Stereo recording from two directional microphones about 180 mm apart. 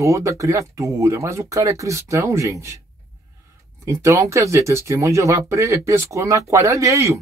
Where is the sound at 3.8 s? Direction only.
15° right (ahead or behind).